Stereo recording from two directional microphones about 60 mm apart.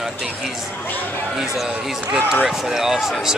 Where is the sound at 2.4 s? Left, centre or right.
Centre.